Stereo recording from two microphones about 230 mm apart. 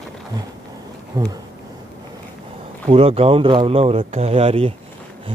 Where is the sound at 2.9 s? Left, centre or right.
Right.